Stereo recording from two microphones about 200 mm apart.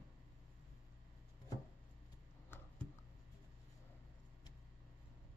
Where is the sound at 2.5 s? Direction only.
10° left (ahead or behind).